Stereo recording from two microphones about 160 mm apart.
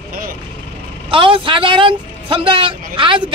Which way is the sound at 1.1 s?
35° right (ahead or behind).